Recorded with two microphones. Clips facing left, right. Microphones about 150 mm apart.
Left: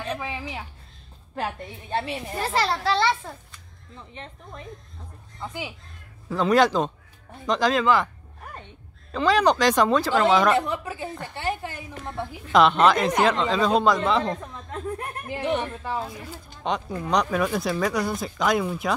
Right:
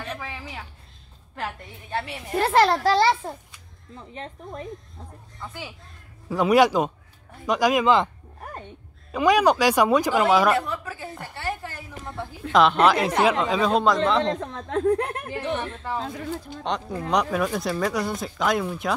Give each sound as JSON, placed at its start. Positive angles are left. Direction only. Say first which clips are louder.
{"t": 0.1, "sound": "a sound", "louder": "left 4 dB", "side_deg": 20}
{"t": 1.3, "sound": "a woman's voice", "louder": "left 3 dB", "side_deg": 25}
{"t": 2.3, "sound": "a child's voice", "louder": "right 7 dB", "side_deg": -55}
{"t": 5.4, "sound": "speech", "louder": "left 3 dB", "side_deg": 15}
{"t": 6.2, "sound": "speech", "louder": "right 2 dB", "side_deg": -10}
{"t": 9.1, "sound": "speech", "louder": "right 1 dB", "side_deg": -10}
{"t": 10.5, "sound": "a woman's voice", "louder": "left 1 dB", "side_deg": 20}
{"t": 12.5, "sound": "speech", "louder": "even", "side_deg": 0}
{"t": 13.7, "sound": "speech", "louder": "even", "side_deg": 0}
{"t": 14.4, "sound": "speech", "louder": "right 9 dB", "side_deg": -80}
{"t": 15.4, "sound": "speech", "louder": "left 4 dB", "side_deg": 15}